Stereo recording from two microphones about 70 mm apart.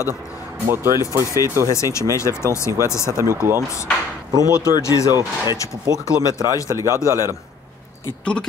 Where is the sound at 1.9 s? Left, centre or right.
Left.